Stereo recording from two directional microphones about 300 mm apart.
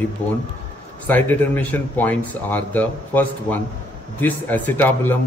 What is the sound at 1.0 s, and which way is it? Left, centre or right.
A man's voice, centre.